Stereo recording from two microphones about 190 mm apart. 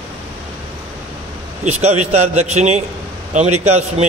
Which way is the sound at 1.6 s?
35° right (ahead or behind).